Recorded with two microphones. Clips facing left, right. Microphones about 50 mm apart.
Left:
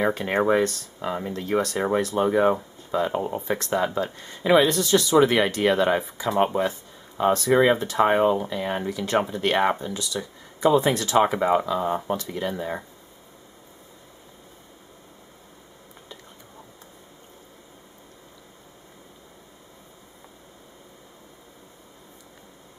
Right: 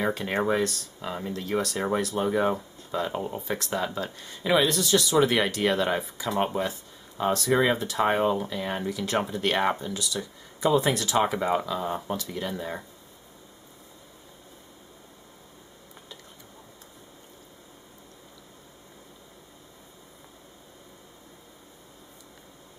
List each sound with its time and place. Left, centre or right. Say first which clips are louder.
0.0 s speech: left 4 dB; centre
1.6 s speech: left 4 dB; centre
4.6 s speech: left 3 dB; centre